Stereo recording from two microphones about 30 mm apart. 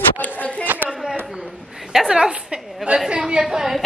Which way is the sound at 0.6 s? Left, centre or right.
Right.